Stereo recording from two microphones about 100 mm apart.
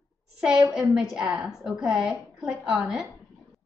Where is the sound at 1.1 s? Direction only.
10° right (ahead or behind).